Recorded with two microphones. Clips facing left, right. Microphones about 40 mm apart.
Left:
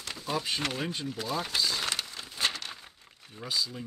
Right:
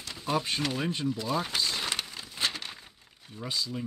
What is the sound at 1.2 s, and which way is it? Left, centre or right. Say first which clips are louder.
Speech: left 2 dB; right.